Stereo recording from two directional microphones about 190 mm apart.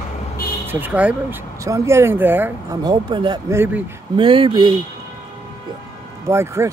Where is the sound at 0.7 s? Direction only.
10° right (ahead or behind).